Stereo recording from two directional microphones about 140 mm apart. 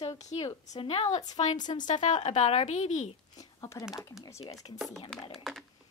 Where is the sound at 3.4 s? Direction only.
25° left (ahead or behind).